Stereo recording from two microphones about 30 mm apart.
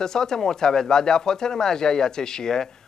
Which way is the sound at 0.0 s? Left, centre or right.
Centre.